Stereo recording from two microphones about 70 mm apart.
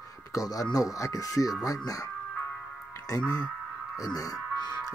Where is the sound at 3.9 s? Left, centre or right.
Left.